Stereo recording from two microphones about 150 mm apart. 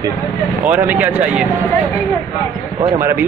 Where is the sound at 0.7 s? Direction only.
10° right (ahead or behind).